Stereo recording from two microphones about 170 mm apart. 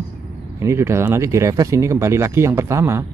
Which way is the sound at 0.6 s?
15° right (ahead or behind).